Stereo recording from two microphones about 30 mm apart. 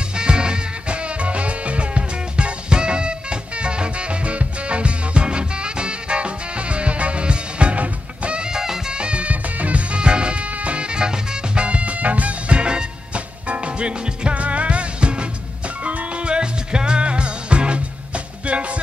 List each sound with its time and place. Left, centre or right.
0.1 s music: right
8.4 s music: right
8.9 s music: right
9.2 s music: right
14.3 s music: right
15.8 s music: right